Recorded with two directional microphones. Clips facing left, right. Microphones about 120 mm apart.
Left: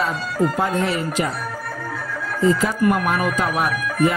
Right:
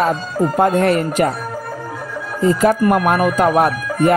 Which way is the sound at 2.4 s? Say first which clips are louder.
Right 4 dB; 50° right (ahead or behind).